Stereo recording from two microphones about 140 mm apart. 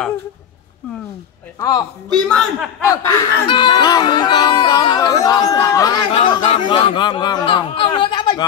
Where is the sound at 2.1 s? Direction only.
5° left (ahead or behind).